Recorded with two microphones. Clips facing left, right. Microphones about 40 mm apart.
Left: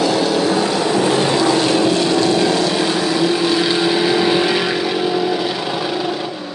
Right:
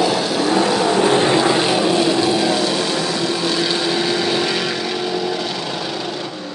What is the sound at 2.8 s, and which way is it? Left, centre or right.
Vehicle, centre.